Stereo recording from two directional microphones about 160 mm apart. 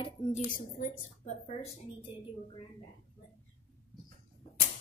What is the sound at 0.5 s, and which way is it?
A woman's voice, 60° left (ahead or behind).